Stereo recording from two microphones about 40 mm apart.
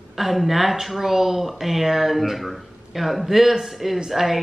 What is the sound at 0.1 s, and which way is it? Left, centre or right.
Speech, centre.